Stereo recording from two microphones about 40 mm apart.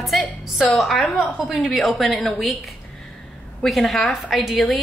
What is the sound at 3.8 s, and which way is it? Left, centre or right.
A woman's voice, centre.